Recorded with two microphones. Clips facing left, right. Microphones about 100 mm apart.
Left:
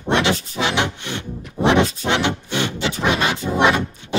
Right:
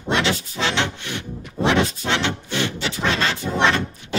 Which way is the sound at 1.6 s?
15° left (ahead or behind).